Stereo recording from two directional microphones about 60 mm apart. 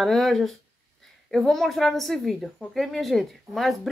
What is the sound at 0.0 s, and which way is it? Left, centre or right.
Speech, centre.